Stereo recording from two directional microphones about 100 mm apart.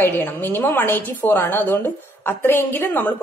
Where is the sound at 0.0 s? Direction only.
20° left (ahead or behind).